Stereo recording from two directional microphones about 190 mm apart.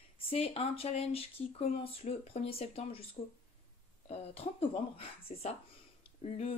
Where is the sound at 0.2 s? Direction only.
30° left (ahead or behind).